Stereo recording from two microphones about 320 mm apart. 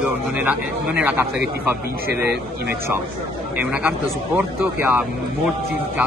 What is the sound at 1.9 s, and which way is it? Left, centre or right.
Speech, right.